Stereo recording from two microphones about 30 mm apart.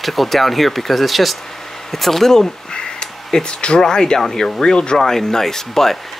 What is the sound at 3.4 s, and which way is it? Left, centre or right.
Speech, left.